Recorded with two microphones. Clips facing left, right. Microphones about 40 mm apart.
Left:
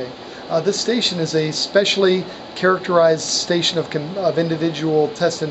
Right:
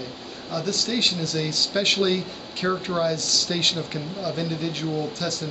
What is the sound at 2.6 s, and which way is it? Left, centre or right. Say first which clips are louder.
Speech: left 10 dB; left.